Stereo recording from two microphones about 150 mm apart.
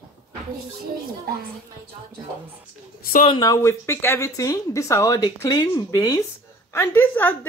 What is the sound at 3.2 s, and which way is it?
Speech, 25° left (ahead or behind).